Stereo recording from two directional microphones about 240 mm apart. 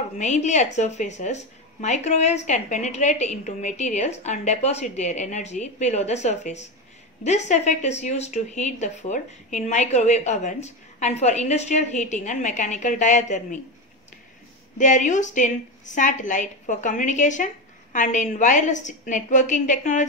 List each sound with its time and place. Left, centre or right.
0.2 s speech: left
14.8 s a woman's voice: left